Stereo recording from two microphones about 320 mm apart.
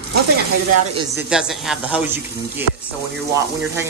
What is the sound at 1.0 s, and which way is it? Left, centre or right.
Speech, centre.